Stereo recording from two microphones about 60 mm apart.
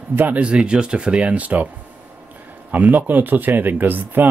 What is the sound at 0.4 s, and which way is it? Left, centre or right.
Speech, centre.